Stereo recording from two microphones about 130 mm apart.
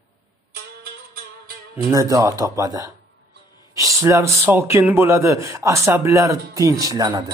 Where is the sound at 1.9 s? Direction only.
25° right (ahead or behind).